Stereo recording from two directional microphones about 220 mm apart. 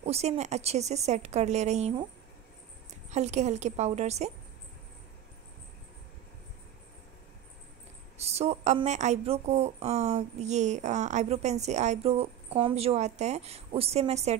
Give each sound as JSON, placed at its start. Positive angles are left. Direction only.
{"t": 0.0, "sound": "speech", "side_deg": -30}
{"t": 3.1, "sound": "a woman's voice", "side_deg": -30}
{"t": 8.2, "sound": "speech", "side_deg": -30}